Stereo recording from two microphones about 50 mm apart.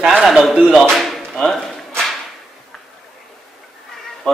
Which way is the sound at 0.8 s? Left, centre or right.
Centre.